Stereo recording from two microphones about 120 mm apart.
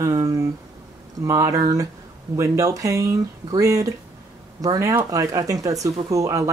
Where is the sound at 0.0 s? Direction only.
30° right (ahead or behind).